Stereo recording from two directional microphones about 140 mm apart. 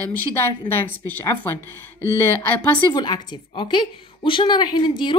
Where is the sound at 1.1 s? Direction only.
15° left (ahead or behind).